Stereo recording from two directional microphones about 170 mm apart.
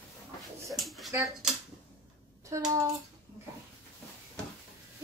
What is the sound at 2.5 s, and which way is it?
Speech, 20° right (ahead or behind).